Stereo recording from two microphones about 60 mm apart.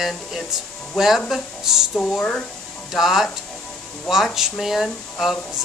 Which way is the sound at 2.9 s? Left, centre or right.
Centre.